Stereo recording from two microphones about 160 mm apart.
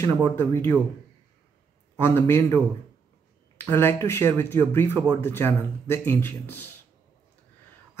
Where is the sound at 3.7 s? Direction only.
15° left (ahead or behind).